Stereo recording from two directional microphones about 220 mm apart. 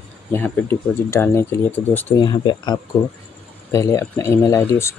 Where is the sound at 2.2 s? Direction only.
20° left (ahead or behind).